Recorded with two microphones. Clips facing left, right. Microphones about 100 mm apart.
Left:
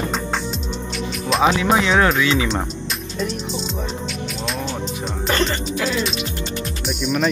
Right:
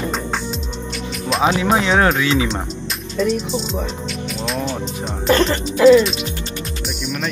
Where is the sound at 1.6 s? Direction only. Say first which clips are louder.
Right 1 dB; 35° right (ahead or behind).